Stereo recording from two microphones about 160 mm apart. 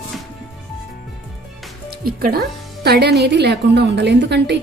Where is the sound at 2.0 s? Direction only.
70° right (ahead or behind).